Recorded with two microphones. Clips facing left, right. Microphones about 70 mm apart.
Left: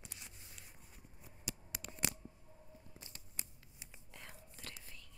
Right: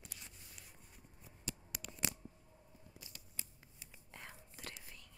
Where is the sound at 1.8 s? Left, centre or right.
Left.